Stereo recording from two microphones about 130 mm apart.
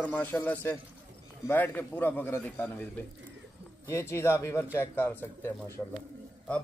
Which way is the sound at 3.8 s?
20° left (ahead or behind).